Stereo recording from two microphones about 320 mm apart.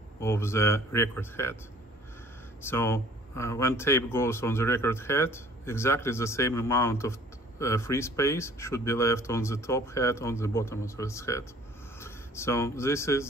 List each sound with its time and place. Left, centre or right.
0.2 s speech: centre
2.6 s speech: centre